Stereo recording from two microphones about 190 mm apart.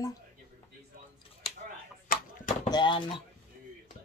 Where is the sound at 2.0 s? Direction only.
45° left (ahead or behind).